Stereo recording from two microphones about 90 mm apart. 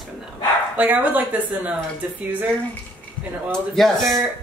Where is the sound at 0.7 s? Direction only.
20° right (ahead or behind).